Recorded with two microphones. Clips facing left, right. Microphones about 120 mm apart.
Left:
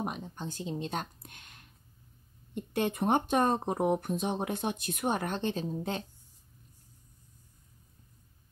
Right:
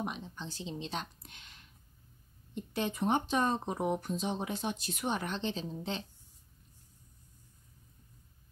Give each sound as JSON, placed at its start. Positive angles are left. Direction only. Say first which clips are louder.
{"t": 0.0, "sound": "speech", "louder": "left 3 dB", "side_deg": 45}